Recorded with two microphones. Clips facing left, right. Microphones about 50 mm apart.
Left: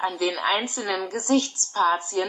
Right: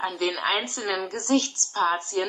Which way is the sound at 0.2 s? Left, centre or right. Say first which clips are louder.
Left 1 dB; right.